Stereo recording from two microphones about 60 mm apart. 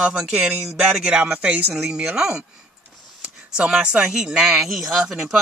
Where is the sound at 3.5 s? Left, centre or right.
Centre.